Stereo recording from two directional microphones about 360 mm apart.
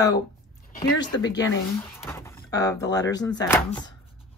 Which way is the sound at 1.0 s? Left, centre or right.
Centre.